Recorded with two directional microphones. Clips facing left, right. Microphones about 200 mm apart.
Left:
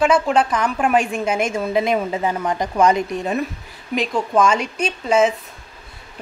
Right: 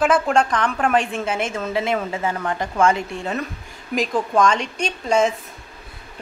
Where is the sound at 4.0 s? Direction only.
Centre (ahead or behind).